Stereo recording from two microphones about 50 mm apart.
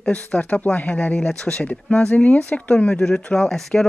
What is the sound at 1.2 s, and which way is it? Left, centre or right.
Speech, centre.